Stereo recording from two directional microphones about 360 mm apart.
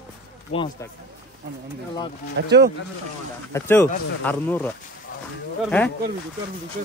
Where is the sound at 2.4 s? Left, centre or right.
Right.